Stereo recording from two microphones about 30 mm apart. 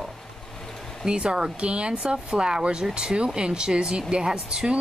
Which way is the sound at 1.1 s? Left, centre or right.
Right.